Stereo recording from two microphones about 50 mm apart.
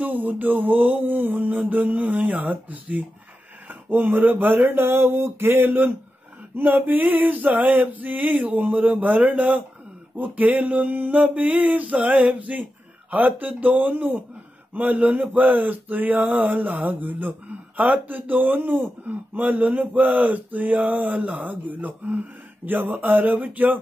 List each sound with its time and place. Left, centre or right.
0.0 s speech: right
3.6 s a sound: right
4.3 s speech: right
4.6 s speech: right